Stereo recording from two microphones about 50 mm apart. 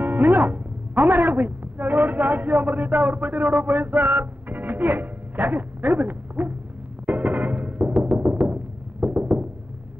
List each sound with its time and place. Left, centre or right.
0.0 s speech: right
7.1 s music: right
9.0 s a sound: right